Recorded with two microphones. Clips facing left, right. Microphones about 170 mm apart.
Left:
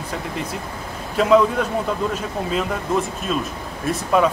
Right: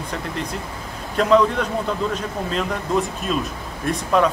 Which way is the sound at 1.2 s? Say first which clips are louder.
Left 1 dB; 5° left (ahead or behind).